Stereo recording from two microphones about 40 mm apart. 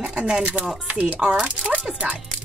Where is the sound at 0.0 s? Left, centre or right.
Right.